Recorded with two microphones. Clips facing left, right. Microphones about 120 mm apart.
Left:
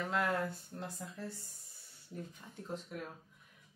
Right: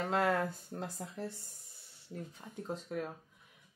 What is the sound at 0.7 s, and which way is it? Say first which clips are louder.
Speech: right 4 dB; 80° right.